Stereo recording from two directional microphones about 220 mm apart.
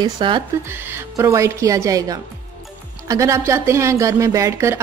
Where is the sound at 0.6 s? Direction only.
10° right (ahead or behind).